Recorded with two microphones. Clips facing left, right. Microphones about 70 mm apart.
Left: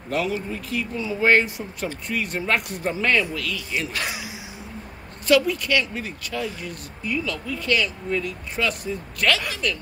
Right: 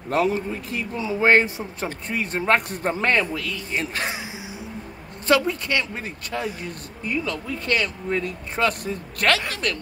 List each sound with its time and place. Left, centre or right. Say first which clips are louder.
0.1 s speech: right 3 dB; right